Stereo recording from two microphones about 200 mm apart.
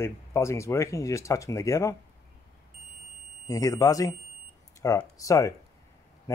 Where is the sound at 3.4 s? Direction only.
15° left (ahead or behind).